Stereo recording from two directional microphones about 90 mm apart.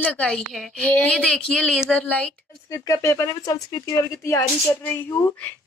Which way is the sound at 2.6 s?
35° left (ahead or behind).